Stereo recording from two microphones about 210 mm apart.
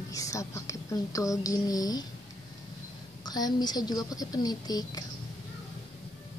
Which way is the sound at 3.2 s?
20° left (ahead or behind).